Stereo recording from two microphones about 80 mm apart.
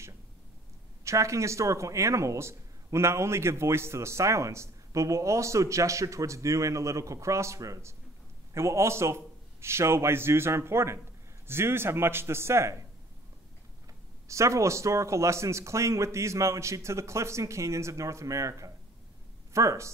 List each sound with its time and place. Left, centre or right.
1.0 s speech: right
14.2 s speech: right